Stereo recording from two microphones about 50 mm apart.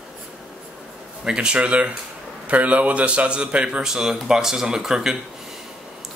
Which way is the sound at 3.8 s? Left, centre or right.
Centre.